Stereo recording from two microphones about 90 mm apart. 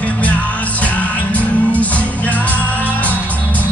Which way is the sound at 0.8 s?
15° left (ahead or behind).